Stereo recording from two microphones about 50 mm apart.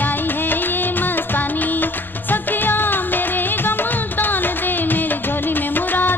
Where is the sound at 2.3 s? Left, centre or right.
Left.